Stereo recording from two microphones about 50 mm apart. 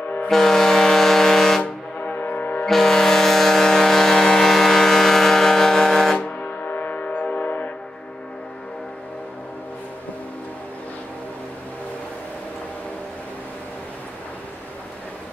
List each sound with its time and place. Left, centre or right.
0.3 s vehicle: centre
1.6 s music: left
2.6 s music: centre
6.1 s music: left
6.6 s music: left